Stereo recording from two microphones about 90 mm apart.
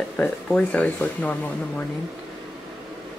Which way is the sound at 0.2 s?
15° left (ahead or behind).